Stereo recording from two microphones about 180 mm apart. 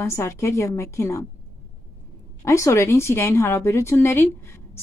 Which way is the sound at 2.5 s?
15° left (ahead or behind).